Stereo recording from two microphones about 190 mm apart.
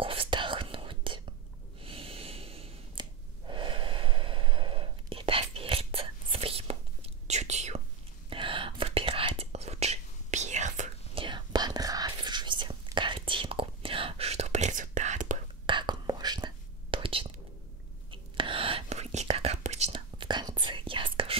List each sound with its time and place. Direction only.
0.0 s whispering: 30° right (ahead or behind)
1.8 s breathing: 30° right (ahead or behind)
8.3 s whispering: 25° right (ahead or behind)
11.2 s whispering: 25° right (ahead or behind); by 15.3 s 40° right (ahead or behind)
15.6 s whispering: 25° right (ahead or behind)